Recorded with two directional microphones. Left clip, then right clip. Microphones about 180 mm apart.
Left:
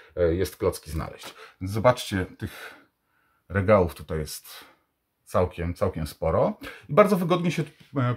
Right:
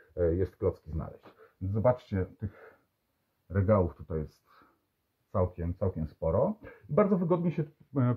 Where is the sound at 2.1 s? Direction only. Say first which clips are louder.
Left 6 dB; 30° left (ahead or behind).